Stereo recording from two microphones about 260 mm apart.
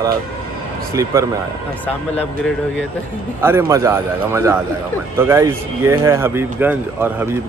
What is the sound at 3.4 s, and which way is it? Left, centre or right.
Speech, centre.